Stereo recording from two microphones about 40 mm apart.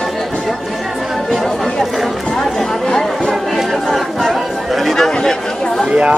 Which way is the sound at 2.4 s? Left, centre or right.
Centre.